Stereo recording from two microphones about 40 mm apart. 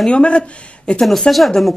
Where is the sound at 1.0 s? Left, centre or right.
Centre.